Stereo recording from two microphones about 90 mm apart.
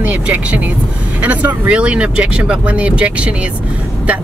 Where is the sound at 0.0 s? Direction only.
15° right (ahead or behind).